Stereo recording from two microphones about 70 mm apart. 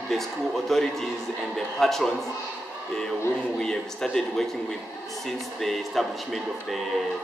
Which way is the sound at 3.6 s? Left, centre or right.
Centre.